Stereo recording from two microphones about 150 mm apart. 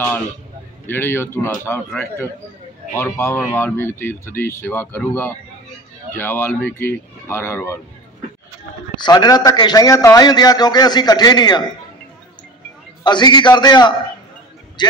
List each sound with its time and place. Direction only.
0.8 s speech: 15° left (ahead or behind)
2.9 s speech: 15° left (ahead or behind)
8.9 s a man's voice: 30° left (ahead or behind)
13.0 s a man's voice: 30° left (ahead or behind)